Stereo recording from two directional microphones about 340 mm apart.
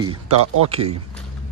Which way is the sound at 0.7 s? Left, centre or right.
Centre.